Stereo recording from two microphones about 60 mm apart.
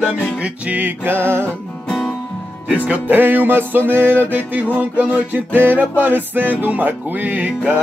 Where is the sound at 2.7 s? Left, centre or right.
Right.